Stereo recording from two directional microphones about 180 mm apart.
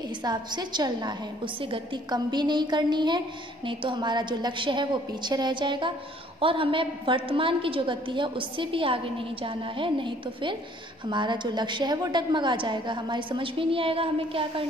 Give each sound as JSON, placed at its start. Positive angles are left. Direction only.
{"t": 0.2, "sound": "a woman's voice", "side_deg": -25}